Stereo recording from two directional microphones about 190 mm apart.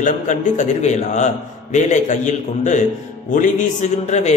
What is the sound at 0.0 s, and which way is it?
A man's voice, 40° left (ahead or behind).